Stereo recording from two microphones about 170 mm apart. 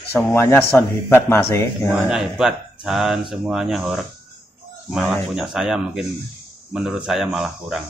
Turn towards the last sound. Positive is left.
turn(degrees=0)  # may be behind; listen again after turning